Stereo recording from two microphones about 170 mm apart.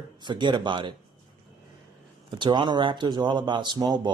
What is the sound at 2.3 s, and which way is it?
Speech, 25° right (ahead or behind).